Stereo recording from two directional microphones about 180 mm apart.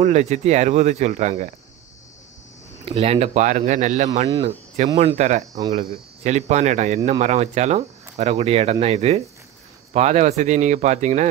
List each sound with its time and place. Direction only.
0.0 s speech: 40° right (ahead or behind)
2.8 s speech: 35° right (ahead or behind)